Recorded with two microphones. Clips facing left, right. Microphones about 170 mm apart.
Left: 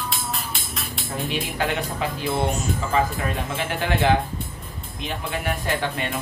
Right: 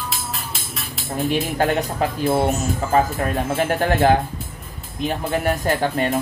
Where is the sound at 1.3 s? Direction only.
45° right (ahead or behind).